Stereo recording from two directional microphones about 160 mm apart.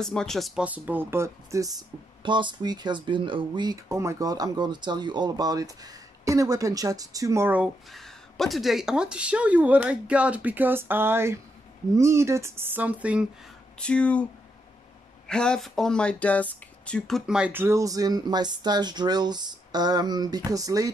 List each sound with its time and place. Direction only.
0.0 s speech: 5° left (ahead or behind)
7.9 s speech: centre (ahead or behind)
13.7 s speech: 5° left (ahead or behind)
15.2 s speech: 5° left (ahead or behind)
17.3 s speech: 10° right (ahead or behind)